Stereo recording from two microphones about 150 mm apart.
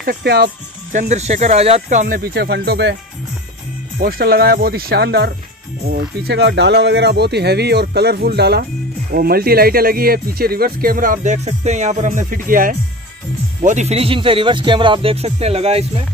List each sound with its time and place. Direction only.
0.0 s speech: 90° right
0.9 s speech: 50° right (ahead or behind)
2.1 s speech: 90° right
4.0 s speech: 85° right; by 11.3 s 65° right (ahead or behind)
11.3 s speech: 50° right (ahead or behind); by 12.7 s 65° right (ahead or behind)
13.6 s speech: 50° right (ahead or behind)